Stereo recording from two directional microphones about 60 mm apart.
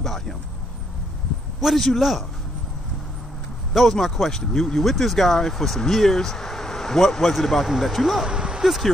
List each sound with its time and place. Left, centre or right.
0.0 s a sound: centre
1.6 s speech: centre
3.7 s speech: centre
8.3 s speech: centre